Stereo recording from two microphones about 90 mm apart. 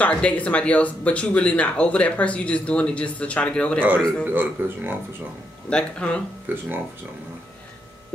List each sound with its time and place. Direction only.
0.0 s speech: 15° left (ahead or behind)
4.2 s a man's voice: 20° right (ahead or behind)
5.7 s speech: 10° left (ahead or behind)
6.5 s a man's voice: 20° right (ahead or behind)